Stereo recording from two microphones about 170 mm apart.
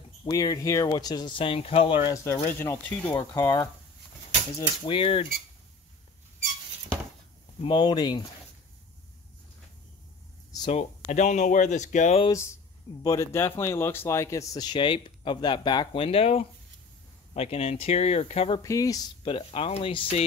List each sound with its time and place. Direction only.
0.2 s speech: 20° left (ahead or behind)
2.1 s speech: 15° left (ahead or behind)
4.8 s speech: 30° left (ahead or behind)
7.6 s speech: 25° left (ahead or behind)
10.7 s speech: 40° left (ahead or behind)
13.0 s speech: 20° left (ahead or behind); by 18.6 s 35° left (ahead or behind)
18.6 s speech: 20° left (ahead or behind)